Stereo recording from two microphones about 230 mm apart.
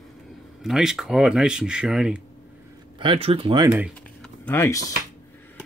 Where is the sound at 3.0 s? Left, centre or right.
Right.